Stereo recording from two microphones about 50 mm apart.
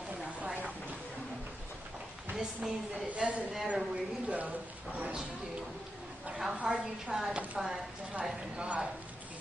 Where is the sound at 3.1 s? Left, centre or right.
Right.